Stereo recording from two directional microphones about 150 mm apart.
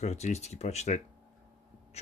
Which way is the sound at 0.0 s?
50° left (ahead or behind).